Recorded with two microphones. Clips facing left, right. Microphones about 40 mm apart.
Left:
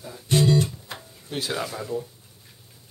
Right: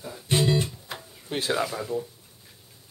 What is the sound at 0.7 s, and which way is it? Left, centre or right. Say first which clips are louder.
Music: even; centre.